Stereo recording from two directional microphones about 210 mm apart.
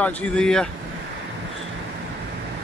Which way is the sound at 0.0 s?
5° left (ahead or behind).